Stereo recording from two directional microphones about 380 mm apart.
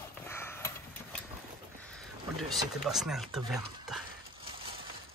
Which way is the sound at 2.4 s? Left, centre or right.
Centre.